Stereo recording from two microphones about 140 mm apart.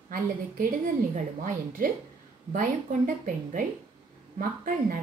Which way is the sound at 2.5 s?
75° right (ahead or behind).